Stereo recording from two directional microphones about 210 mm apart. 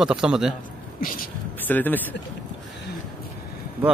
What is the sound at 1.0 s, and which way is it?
Speech, 45° left (ahead or behind).